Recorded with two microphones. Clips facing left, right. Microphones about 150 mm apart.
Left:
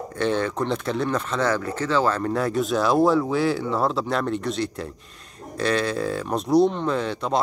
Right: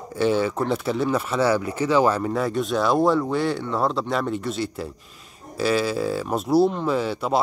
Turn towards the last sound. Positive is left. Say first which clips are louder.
# right 1 dB
turn(degrees=-5)  # may be behind; listen again after turning